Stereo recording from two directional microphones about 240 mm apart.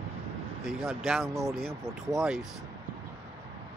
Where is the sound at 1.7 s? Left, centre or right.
Centre.